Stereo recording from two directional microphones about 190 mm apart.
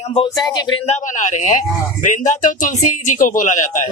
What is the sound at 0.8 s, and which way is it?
Speech, 40° left (ahead or behind).